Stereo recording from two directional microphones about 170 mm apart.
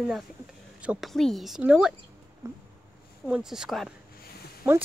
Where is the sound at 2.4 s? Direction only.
15° right (ahead or behind).